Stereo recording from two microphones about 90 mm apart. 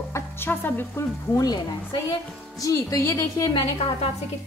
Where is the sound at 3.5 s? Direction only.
75° left (ahead or behind).